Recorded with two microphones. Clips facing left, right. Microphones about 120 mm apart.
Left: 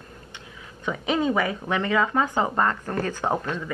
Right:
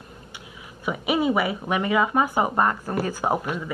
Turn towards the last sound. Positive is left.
turn(degrees=-15)  # may be behind; listen again after turning